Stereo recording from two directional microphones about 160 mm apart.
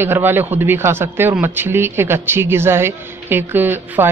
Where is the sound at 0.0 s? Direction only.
15° right (ahead or behind).